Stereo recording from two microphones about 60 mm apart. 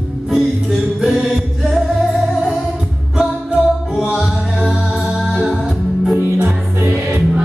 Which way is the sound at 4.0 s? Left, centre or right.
Centre.